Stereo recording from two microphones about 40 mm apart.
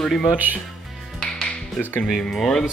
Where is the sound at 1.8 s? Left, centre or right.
Left.